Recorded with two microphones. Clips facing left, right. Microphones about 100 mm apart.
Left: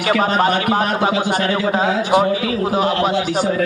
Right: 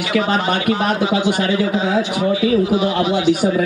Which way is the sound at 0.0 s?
45° left (ahead or behind).